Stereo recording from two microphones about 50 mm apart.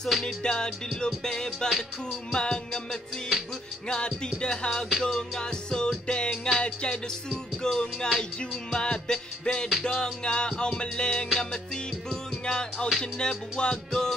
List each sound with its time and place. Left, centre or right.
0.4 s music: centre